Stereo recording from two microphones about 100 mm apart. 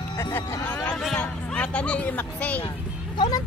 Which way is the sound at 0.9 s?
Centre (ahead or behind).